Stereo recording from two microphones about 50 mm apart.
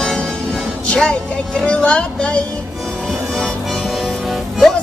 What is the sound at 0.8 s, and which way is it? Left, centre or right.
Vehicle, centre.